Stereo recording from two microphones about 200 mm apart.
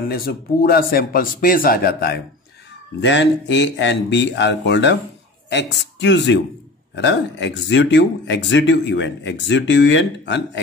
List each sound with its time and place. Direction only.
0.1 s a man's voice: 50° left (ahead or behind)
3.0 s speech: 60° left (ahead or behind)